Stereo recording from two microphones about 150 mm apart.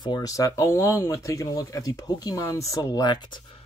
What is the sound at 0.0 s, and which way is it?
Speech, 25° left (ahead or behind).